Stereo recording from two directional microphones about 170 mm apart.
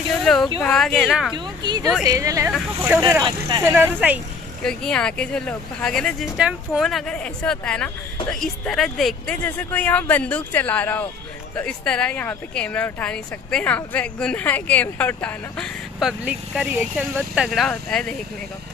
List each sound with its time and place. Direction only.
0.2 s speech: centre (ahead or behind)
1.3 s speech: 25° right (ahead or behind)
3.6 s speech: 10° right (ahead or behind)
4.6 s speech: 5° left (ahead or behind)